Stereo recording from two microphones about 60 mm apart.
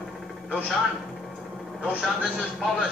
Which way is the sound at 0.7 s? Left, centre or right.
Centre.